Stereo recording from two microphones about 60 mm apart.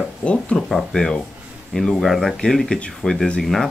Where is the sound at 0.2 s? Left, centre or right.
Centre.